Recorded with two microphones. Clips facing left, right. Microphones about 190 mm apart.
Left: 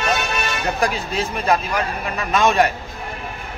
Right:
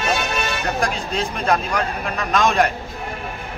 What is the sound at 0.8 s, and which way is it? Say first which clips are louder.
Speech: left 1 dB; 5° left (ahead or behind).